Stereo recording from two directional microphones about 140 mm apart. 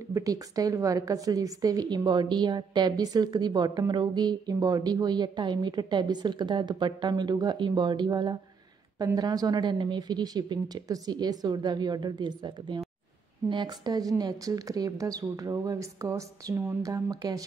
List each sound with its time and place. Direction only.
0.1 s a woman's voice: 25° right (ahead or behind)